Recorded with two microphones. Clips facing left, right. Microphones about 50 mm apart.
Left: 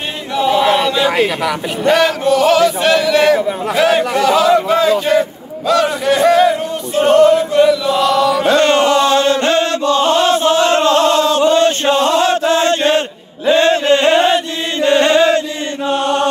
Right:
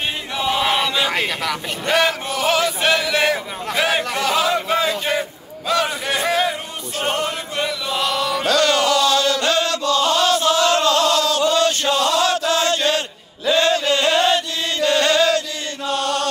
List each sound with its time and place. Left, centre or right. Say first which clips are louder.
0.4 s a sound: left 7 dB; centre
2.0 s chant: left 5 dB; centre
3.3 s a man's voice: left 10 dB; centre
3.7 s chant: left 6 dB; centre
5.7 s a sound: left 7 dB; centre
7.1 s chant: left 15 dB; centre
8.5 s chant: left 3 dB; left